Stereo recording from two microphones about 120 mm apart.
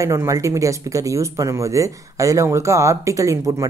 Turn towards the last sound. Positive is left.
turn(degrees=-25)  # may be behind; listen again after turning